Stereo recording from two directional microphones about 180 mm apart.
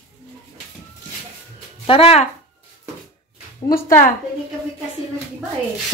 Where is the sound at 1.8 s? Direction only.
30° left (ahead or behind).